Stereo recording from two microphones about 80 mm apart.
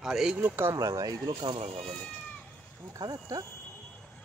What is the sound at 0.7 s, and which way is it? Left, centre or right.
Speech, right.